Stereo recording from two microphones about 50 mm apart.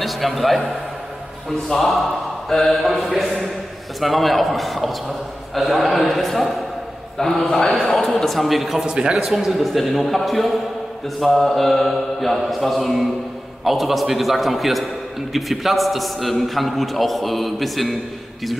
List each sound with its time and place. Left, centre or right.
0.0 s a man's voice: centre
1.7 s a man's voice: centre
8.8 s a man's voice: centre
9.1 s a man's voice: centre